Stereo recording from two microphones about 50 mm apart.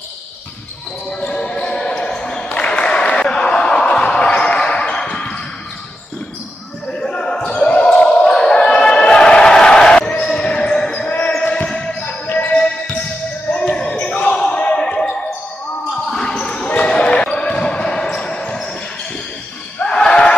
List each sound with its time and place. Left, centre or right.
1.2 s basketball bounce: centre
6.9 s basketball bounce: centre
19.8 s a sound: centre